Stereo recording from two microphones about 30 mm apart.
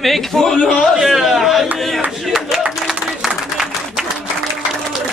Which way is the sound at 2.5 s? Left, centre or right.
Centre.